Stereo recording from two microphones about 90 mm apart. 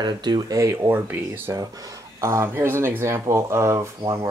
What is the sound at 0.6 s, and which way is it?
Speech, 30° right (ahead or behind).